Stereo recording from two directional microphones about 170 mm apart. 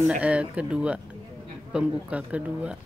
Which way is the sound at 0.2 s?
5° right (ahead or behind).